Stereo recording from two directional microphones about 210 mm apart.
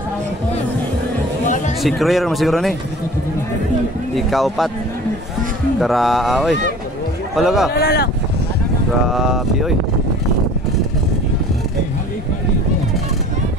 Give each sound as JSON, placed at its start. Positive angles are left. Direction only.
{"t": 1.8, "sound": "speech", "side_deg": 0}
{"t": 4.1, "sound": "speech", "side_deg": 0}
{"t": 5.8, "sound": "speech", "side_deg": 0}
{"t": 7.7, "sound": "speech", "side_deg": 45}
{"t": 9.1, "sound": "speech", "side_deg": 0}